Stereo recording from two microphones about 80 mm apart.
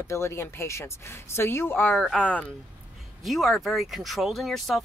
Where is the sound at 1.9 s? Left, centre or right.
Centre.